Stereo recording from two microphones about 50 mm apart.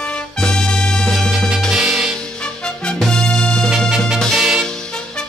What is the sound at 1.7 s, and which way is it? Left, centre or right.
Music, centre.